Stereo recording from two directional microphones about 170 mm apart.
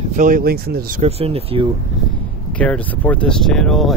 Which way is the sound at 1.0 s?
35° right (ahead or behind).